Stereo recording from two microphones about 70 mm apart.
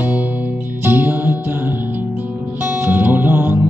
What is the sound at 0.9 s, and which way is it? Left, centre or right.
Music, right.